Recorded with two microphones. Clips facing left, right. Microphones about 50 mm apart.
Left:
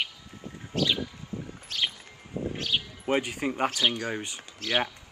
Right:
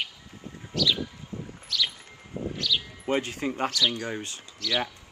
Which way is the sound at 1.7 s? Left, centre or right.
Left.